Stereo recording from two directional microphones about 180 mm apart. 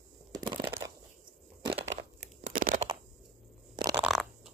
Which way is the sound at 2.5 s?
50° right (ahead or behind).